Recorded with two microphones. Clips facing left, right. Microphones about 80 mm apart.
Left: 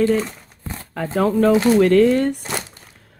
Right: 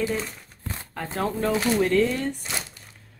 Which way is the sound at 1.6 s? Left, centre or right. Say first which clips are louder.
Left 5 dB; left.